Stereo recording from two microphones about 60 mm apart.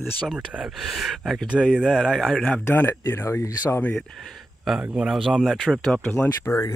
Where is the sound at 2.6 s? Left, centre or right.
Left.